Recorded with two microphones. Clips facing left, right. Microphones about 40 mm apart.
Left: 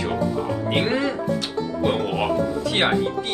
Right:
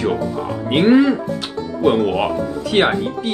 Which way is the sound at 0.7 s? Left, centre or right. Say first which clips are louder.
Right 11 dB; centre.